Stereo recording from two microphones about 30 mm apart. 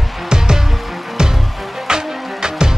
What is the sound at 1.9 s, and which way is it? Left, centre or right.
Music, right.